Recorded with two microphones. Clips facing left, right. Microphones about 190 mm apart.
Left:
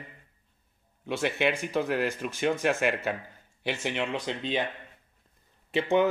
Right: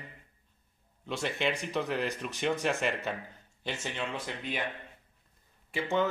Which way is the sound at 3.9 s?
20° left (ahead or behind).